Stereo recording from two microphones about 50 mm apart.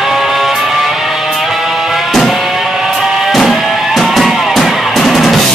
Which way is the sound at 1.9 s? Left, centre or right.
Centre.